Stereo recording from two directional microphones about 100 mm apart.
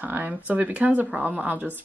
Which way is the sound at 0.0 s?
20° right (ahead or behind).